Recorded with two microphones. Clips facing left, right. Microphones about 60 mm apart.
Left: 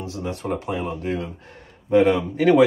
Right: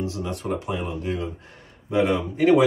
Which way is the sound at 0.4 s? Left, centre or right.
Left.